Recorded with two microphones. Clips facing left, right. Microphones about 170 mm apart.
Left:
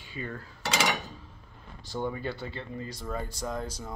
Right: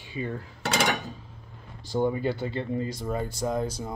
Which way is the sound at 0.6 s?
60° right (ahead or behind).